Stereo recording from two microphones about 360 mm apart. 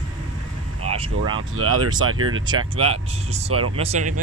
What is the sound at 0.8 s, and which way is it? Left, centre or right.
Vehicle, centre.